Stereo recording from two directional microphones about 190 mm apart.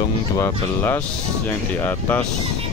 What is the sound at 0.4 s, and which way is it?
Speech, 10° left (ahead or behind).